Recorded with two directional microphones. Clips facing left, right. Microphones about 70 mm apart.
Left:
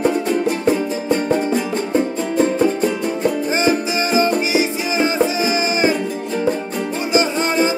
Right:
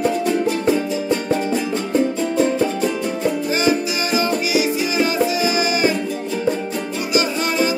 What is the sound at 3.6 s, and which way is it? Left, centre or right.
Music, left.